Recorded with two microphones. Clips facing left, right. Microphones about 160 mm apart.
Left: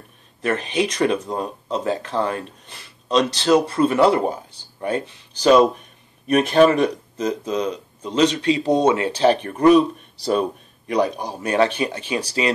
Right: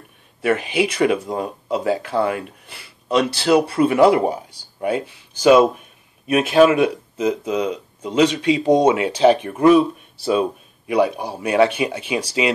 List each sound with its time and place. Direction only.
0.4 s speech: 10° right (ahead or behind)
10.9 s speech: 10° right (ahead or behind)